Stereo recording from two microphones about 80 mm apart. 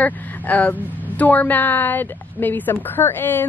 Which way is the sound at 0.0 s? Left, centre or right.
Left.